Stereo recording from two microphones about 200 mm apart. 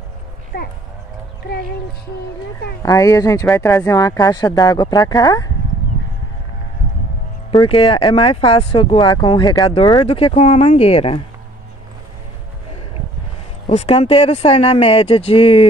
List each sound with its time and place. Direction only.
0.5 s speech: 55° left (ahead or behind)
2.8 s speech: 15° left (ahead or behind)
7.5 s speech: 25° left (ahead or behind)
13.7 s speech: 30° left (ahead or behind)